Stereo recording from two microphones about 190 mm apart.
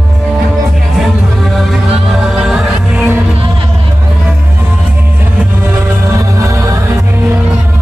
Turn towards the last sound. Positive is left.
turn(degrees=-15)  # may be behind; listen again after turning